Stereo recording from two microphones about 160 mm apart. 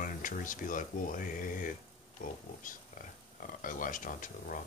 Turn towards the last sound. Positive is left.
turn(degrees=60)  # may be behind; listen again after turning